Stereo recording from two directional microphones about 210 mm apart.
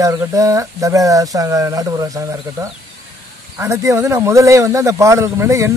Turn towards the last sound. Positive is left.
turn(degrees=-15)  # may be behind; listen again after turning